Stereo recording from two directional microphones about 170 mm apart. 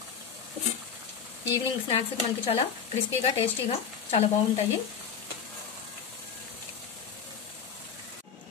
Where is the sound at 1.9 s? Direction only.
35° left (ahead or behind).